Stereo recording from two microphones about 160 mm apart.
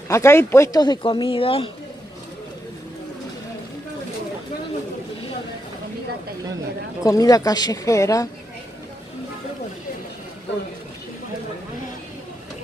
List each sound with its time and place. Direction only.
0.1 s speech: 15° left (ahead or behind)
0.8 s speech: 30° left (ahead or behind)
7.0 s speech: 20° left (ahead or behind)